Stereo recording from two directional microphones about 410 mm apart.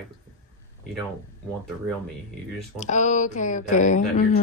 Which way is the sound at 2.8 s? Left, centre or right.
Centre.